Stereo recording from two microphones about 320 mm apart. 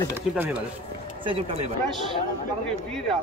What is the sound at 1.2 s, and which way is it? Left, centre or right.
Speech, centre.